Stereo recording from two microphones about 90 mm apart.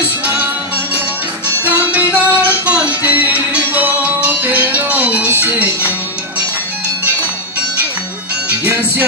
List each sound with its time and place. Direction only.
1.9 s music: 15° right (ahead or behind)
8.5 s music: 20° right (ahead or behind)